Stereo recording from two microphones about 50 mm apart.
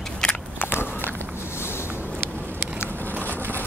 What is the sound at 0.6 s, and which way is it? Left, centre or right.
Walk, left.